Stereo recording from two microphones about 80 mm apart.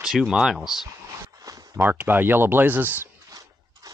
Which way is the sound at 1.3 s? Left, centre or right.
Right.